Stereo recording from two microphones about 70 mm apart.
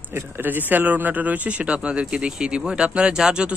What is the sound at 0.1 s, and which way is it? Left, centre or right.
Speech, right.